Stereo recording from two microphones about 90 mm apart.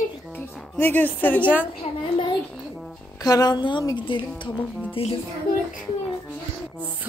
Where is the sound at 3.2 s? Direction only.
45° left (ahead or behind); by 4.5 s 65° left (ahead or behind).